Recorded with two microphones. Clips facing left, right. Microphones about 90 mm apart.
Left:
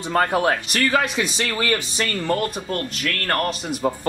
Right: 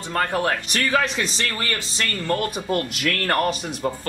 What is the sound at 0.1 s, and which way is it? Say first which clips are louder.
Speech: left 3 dB; 15° left (ahead or behind).